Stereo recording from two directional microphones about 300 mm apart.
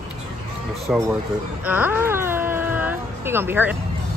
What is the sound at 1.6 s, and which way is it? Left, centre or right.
Wail, centre.